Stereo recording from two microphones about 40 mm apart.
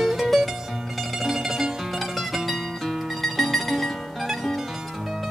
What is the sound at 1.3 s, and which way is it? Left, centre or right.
Music, centre.